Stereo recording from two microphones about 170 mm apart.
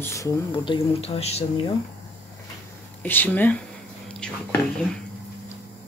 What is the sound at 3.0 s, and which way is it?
Speech, 10° left (ahead or behind).